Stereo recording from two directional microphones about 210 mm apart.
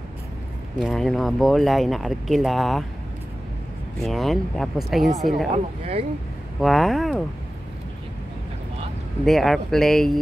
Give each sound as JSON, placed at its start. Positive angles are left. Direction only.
{"t": 0.7, "sound": "speech", "side_deg": 0}
{"t": 4.0, "sound": "speech", "side_deg": 0}
{"t": 5.5, "sound": "speech", "side_deg": -25}
{"t": 6.6, "sound": "speech", "side_deg": 0}
{"t": 9.2, "sound": "speech", "side_deg": 0}